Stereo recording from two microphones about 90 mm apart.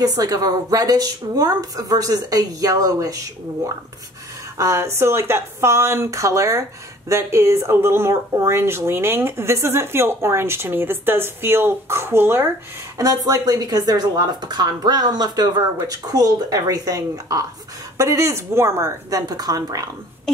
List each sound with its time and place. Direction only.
0.0 s speech: 45° right (ahead or behind)
4.6 s speech: 35° right (ahead or behind)
12.9 s speech: 45° right (ahead or behind)